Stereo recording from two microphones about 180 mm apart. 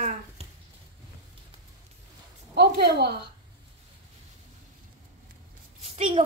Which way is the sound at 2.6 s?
65° right (ahead or behind).